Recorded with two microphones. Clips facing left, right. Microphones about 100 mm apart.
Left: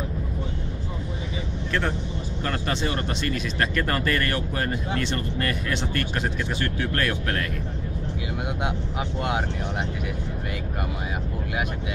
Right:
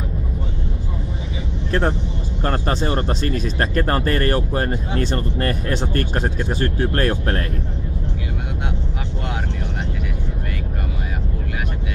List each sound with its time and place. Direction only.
1.7 s speech: 35° right (ahead or behind)